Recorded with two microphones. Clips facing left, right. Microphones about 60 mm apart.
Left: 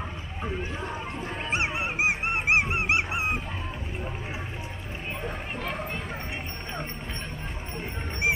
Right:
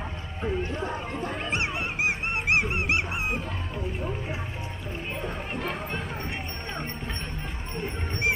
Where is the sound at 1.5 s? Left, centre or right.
Centre.